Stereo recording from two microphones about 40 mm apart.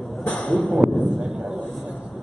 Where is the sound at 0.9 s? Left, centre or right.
Centre.